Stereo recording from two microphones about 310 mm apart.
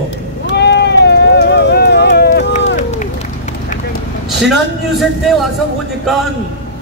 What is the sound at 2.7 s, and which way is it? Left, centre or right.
Run, left.